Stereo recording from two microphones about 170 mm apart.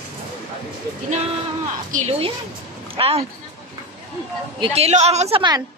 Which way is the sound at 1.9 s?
40° right (ahead or behind).